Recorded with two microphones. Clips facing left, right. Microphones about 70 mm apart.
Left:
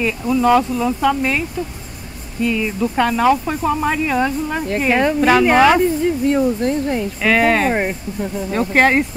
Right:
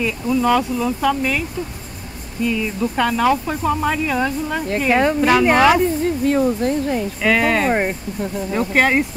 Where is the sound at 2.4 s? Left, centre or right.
Centre.